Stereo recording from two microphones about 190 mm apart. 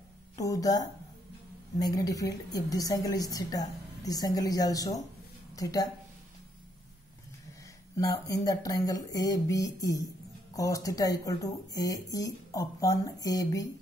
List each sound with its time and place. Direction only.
0.4 s a woman's voice: 20° left (ahead or behind)
7.9 s a woman's voice: 15° left (ahead or behind)